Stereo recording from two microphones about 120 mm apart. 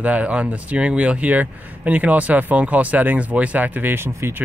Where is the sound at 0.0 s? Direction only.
10° right (ahead or behind).